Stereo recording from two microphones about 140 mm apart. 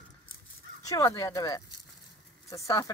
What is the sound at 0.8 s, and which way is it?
Speech, 25° left (ahead or behind).